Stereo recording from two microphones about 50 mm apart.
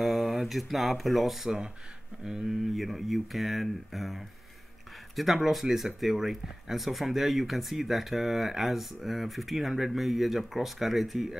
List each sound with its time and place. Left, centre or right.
0.0 s speech: centre
2.2 s speech: centre
2.7 s speech: centre